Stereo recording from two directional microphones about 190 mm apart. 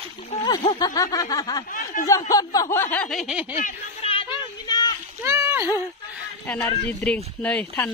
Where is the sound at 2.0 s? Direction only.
15° left (ahead or behind); by 3.5 s 5° right (ahead or behind).